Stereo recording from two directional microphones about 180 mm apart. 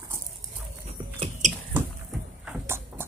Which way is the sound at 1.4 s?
45° right (ahead or behind).